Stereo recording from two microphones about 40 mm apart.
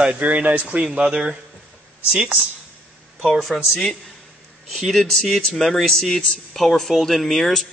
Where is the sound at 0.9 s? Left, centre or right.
Right.